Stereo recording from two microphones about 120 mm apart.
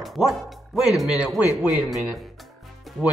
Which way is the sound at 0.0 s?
Centre (ahead or behind).